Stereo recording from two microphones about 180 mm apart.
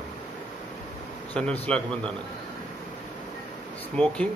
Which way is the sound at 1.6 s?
5° left (ahead or behind).